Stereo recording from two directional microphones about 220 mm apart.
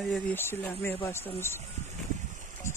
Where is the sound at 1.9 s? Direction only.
35° right (ahead or behind).